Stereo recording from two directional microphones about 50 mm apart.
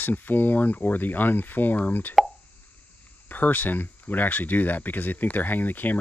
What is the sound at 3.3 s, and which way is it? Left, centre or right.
Speech, left.